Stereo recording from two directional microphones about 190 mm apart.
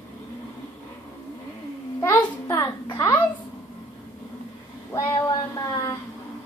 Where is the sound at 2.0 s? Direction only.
15° left (ahead or behind).